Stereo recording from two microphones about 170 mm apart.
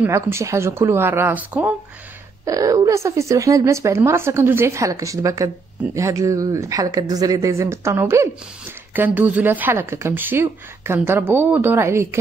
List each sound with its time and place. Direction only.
0.0 s a woman's voice: 15° right (ahead or behind)